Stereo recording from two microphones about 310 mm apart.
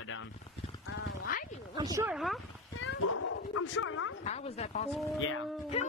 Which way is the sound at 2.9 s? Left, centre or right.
Left.